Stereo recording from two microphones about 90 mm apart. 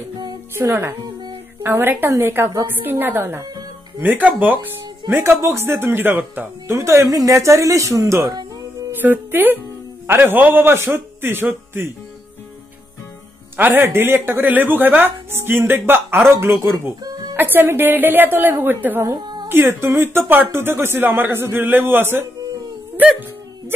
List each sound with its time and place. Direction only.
0.6 s speech: 30° right (ahead or behind)
9.0 s speech: 20° right (ahead or behind)
13.6 s speech: 20° right (ahead or behind)
19.1 s a sound: 55° right (ahead or behind)
19.5 s speech: 25° right (ahead or behind)